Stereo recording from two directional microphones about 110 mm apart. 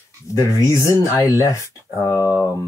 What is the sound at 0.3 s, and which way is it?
Speech, 30° left (ahead or behind).